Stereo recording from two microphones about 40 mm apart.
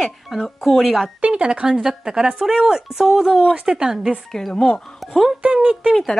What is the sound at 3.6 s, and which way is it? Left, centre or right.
Speech, right.